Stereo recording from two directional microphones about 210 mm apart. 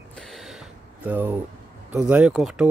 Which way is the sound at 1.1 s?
10° right (ahead or behind).